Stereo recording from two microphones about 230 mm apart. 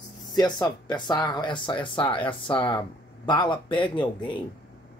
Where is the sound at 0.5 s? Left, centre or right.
Centre.